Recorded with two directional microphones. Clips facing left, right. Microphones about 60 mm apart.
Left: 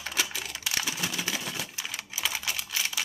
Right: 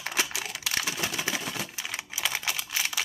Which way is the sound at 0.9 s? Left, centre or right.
Right.